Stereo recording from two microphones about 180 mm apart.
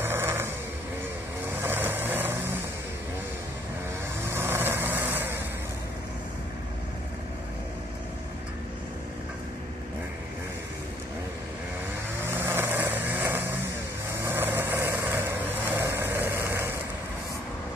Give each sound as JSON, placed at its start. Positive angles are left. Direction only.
{"t": 0.0, "sound": "vehicle", "side_deg": -15}
{"t": 1.6, "sound": "vehicle", "side_deg": -10}
{"t": 4.3, "sound": "vehicle", "side_deg": -15}
{"t": 12.4, "sound": "vehicle", "side_deg": -10}